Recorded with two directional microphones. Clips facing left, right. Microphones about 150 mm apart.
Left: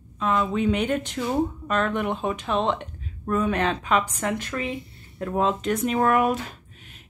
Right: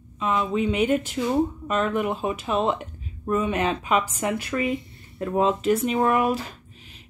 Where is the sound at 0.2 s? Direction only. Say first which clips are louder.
Even; 5° right (ahead or behind).